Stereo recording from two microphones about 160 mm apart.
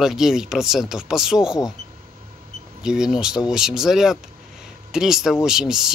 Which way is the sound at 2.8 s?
5° right (ahead or behind).